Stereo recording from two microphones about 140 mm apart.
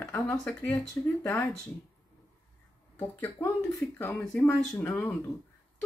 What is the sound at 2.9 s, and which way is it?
Speech, 15° left (ahead or behind).